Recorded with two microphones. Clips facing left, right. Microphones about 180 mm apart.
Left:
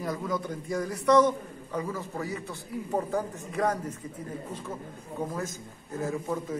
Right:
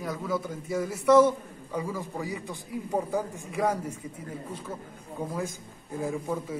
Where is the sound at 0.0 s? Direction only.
Centre (ahead or behind).